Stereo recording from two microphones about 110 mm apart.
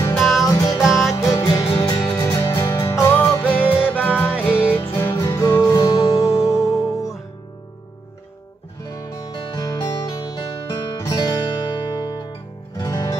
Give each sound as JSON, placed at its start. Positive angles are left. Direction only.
{"t": 0.2, "sound": "music", "side_deg": 0}
{"t": 0.5, "sound": "music", "side_deg": 35}
{"t": 0.7, "sound": "music", "side_deg": -5}
{"t": 1.1, "sound": "music", "side_deg": 25}
{"t": 5.0, "sound": "music", "side_deg": 30}
{"t": 8.8, "sound": "music", "side_deg": 35}